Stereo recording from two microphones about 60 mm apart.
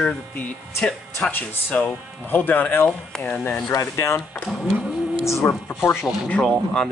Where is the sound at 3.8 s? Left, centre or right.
Left.